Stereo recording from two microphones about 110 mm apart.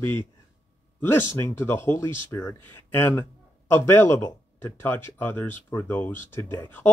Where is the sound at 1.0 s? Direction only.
20° left (ahead or behind).